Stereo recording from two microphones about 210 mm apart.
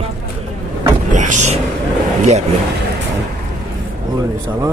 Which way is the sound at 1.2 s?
35° right (ahead or behind).